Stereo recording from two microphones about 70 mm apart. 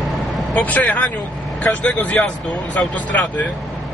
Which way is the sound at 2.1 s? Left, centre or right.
Centre.